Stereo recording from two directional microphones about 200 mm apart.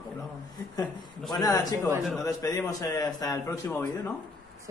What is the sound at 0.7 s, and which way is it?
A man's voice, 20° left (ahead or behind).